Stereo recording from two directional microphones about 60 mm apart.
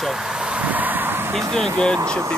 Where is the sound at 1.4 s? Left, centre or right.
Centre.